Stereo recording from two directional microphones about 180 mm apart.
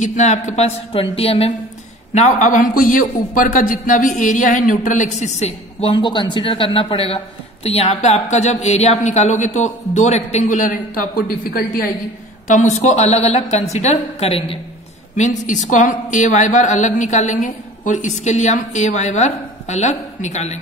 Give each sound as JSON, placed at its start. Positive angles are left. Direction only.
{"t": 0.0, "sound": "a woman's voice", "side_deg": 40}
{"t": 12.4, "sound": "a woman's voice", "side_deg": 40}
{"t": 15.1, "sound": "a woman's voice", "side_deg": 45}